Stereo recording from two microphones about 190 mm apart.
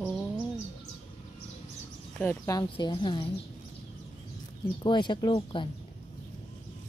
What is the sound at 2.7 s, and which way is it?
Speech, 25° left (ahead or behind).